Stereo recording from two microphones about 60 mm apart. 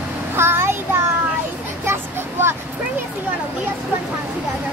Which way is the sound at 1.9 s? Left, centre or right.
Right.